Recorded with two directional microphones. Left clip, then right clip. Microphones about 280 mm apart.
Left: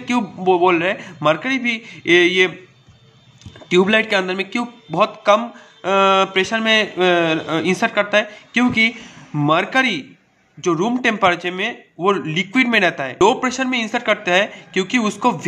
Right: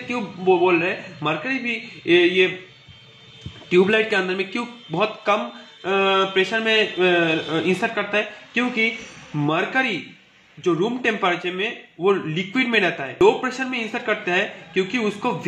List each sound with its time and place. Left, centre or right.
0.5 s a man's voice: left
3.7 s a man's voice: centre